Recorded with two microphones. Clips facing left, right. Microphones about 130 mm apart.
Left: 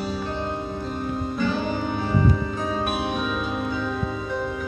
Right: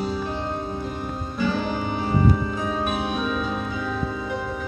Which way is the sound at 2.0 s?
20° right (ahead or behind).